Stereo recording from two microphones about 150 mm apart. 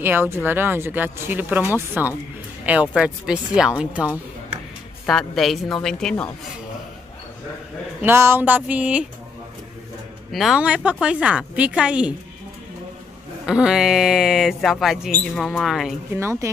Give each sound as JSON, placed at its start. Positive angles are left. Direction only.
{"t": 0.0, "sound": "speech", "side_deg": -15}
{"t": 8.0, "sound": "speech", "side_deg": -15}
{"t": 10.3, "sound": "speech", "side_deg": 0}
{"t": 13.5, "sound": "speech", "side_deg": -5}
{"t": 16.2, "sound": "a woman's voice", "side_deg": -20}